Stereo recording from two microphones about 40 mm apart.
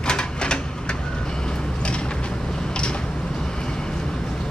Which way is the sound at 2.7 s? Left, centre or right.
Left.